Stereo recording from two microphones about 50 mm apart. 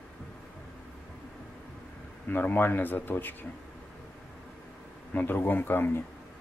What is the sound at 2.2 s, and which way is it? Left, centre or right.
Speech, left.